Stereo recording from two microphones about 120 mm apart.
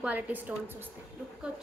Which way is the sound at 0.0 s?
15° right (ahead or behind).